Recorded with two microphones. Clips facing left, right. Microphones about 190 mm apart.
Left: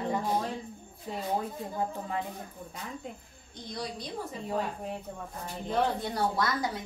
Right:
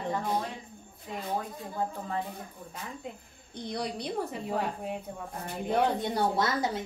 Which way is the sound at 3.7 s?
60° right (ahead or behind).